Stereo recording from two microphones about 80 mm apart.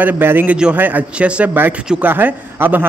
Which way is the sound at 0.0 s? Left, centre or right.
Right.